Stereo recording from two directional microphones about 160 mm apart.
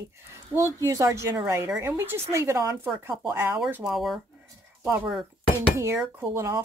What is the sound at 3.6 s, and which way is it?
Speech, 5° right (ahead or behind).